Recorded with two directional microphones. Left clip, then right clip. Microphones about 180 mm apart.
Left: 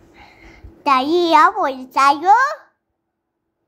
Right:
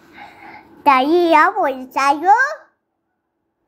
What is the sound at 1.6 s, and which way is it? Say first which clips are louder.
Speech: left 2 dB; 40° left (ahead or behind).